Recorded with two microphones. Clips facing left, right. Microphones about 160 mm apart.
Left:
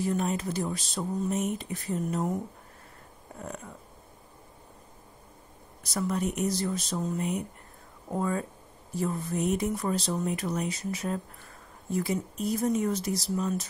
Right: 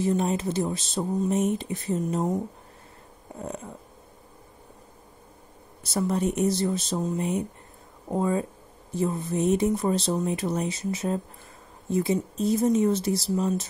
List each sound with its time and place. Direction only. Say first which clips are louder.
0.0 s speech: right 4 dB; 25° right (ahead or behind)
5.9 s speech: right 4 dB; 30° right (ahead or behind)